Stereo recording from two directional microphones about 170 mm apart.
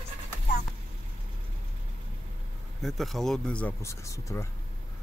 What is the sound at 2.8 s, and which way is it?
Speech, centre (ahead or behind).